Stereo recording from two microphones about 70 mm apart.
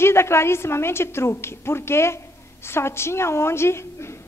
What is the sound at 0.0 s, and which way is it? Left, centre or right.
A woman's voice, left.